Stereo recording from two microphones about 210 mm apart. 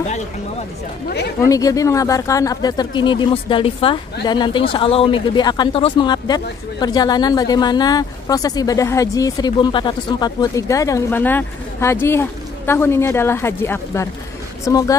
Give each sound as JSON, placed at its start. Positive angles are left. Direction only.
{"t": 1.1, "sound": "speech", "side_deg": 50}
{"t": 1.5, "sound": "speech", "side_deg": 15}